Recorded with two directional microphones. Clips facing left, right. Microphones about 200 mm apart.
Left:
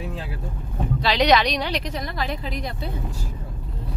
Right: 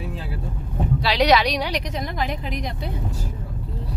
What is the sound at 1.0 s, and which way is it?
Speech, 5° right (ahead or behind).